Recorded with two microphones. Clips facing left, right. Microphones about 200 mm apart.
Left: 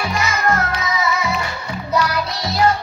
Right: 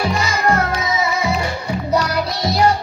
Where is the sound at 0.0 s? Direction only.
30° right (ahead or behind).